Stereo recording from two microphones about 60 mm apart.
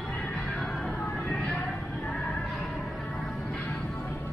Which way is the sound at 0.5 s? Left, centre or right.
Centre.